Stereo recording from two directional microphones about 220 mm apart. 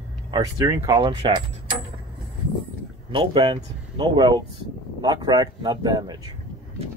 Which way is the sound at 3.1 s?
25° right (ahead or behind).